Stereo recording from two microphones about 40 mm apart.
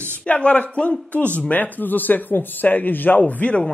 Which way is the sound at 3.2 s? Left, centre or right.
Left.